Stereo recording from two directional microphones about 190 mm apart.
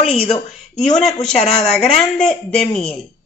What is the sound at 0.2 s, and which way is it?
Speech, 35° left (ahead or behind).